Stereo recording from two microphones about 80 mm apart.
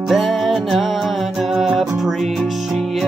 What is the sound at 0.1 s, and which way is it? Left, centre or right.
Music, centre.